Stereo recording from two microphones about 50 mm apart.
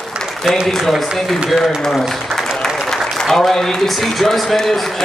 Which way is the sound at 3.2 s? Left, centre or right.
Centre.